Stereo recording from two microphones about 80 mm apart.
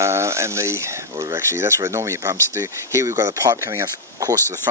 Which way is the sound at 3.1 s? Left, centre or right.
Right.